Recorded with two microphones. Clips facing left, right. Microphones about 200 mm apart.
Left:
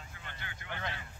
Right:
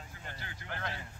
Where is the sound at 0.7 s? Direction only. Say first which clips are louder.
Even; centre (ahead or behind).